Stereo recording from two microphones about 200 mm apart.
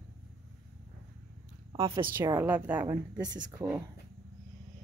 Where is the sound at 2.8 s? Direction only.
20° right (ahead or behind).